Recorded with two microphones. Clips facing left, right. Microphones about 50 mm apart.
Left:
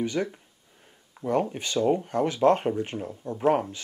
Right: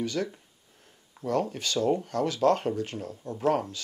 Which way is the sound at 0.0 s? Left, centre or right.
Left.